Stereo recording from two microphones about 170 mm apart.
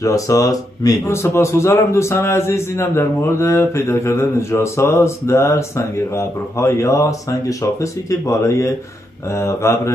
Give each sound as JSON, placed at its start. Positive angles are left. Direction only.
{"t": 0.0, "sound": "a man's voice", "side_deg": 20}